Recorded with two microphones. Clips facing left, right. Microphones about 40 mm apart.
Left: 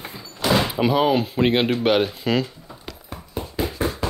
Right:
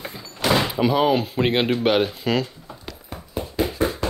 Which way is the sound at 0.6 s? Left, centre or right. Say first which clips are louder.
Left 1 dB; centre.